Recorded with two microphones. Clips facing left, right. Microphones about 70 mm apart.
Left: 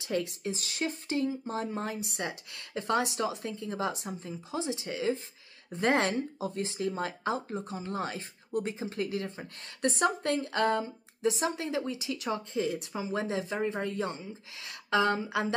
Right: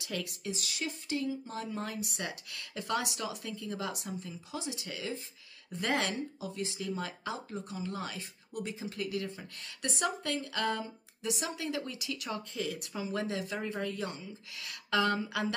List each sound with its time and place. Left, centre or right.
0.0 s speech: left